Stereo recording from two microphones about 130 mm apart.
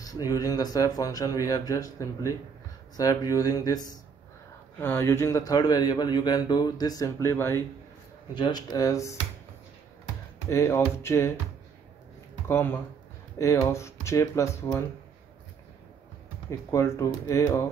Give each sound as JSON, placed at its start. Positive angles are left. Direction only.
{"t": 0.0, "sound": "speech", "side_deg": 30}
{"t": 4.7, "sound": "speech", "side_deg": 20}
{"t": 8.4, "sound": "speech", "side_deg": 35}
{"t": 10.5, "sound": "speech", "side_deg": 20}
{"t": 12.4, "sound": "speech", "side_deg": 15}
{"t": 16.4, "sound": "speech", "side_deg": 25}